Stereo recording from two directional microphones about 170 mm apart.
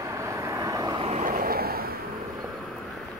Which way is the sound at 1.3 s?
60° right (ahead or behind).